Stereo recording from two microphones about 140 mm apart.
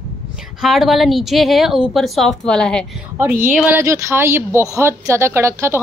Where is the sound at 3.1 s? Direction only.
15° right (ahead or behind).